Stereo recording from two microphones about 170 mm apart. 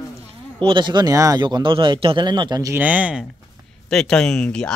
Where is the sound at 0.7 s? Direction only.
30° right (ahead or behind).